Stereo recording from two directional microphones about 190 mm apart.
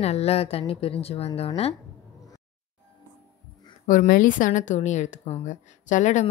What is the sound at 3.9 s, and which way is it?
A woman's voice, 45° left (ahead or behind).